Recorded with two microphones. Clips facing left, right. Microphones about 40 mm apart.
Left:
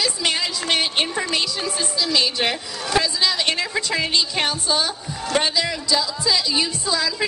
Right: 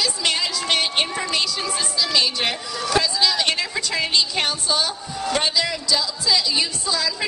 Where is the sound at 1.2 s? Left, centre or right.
Centre.